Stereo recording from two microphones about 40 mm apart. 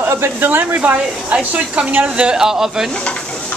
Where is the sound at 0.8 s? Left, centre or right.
Right.